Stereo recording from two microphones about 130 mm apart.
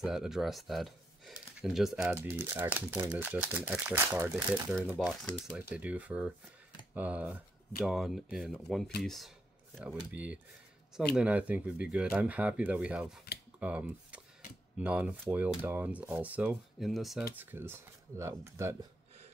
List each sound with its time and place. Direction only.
0.0 s speech: 5° right (ahead or behind)
2.0 s speech: 15° right (ahead or behind)
4.9 s speech: centre (ahead or behind)
5.6 s speech: 10° right (ahead or behind)
7.8 s speech: centre (ahead or behind)
10.1 s speech: 10° right (ahead or behind)
16.9 s speech: centre (ahead or behind)
17.4 s speech: 15° right (ahead or behind)